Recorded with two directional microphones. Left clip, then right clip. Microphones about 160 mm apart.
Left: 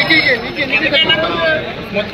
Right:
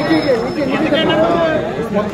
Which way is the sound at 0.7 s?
85° right.